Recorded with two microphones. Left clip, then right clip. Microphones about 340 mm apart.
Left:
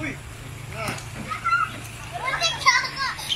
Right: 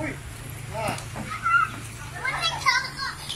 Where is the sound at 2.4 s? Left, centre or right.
Centre.